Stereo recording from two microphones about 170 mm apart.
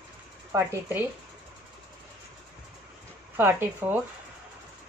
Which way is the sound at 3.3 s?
15° right (ahead or behind).